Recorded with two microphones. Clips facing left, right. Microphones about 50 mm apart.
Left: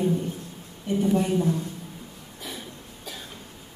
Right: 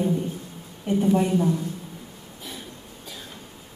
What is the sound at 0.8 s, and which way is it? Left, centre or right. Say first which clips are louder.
Speech: right 2 dB; right.